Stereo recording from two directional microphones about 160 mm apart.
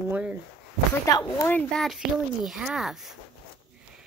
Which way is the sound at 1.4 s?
5° left (ahead or behind).